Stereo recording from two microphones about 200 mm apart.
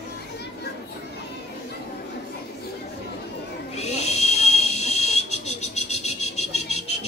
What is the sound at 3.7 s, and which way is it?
Whistle, 35° left (ahead or behind).